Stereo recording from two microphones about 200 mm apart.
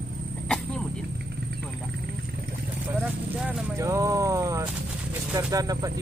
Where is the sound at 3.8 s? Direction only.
15° right (ahead or behind).